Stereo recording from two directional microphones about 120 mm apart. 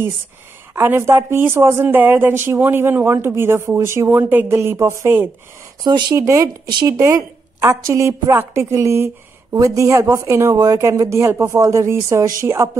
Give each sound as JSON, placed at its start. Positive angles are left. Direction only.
{"t": 0.7, "sound": "a woman's voice", "side_deg": -20}
{"t": 5.9, "sound": "speech", "side_deg": -40}
{"t": 6.1, "sound": "a woman's voice", "side_deg": -25}
{"t": 6.7, "sound": "speech", "side_deg": -40}
{"t": 7.0, "sound": "a woman's voice", "side_deg": -25}